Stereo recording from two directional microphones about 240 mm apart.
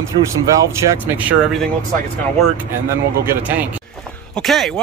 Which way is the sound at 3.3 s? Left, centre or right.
Centre.